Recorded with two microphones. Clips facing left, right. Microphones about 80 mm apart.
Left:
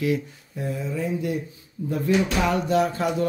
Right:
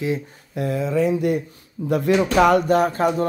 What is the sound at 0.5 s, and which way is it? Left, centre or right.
Speech, right.